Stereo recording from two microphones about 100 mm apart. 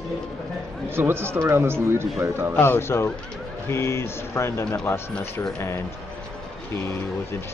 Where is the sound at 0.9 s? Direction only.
25° right (ahead or behind).